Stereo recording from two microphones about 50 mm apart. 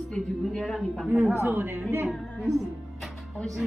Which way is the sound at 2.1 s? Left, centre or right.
Centre.